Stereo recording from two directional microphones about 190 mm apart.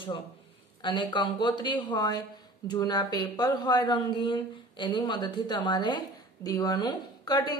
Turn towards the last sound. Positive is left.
turn(degrees=20)  # may be behind; listen again after turning